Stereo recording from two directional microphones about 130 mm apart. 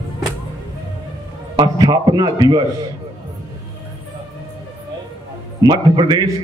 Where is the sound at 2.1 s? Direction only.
30° right (ahead or behind).